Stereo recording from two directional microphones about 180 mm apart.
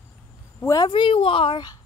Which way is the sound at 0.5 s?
20° left (ahead or behind).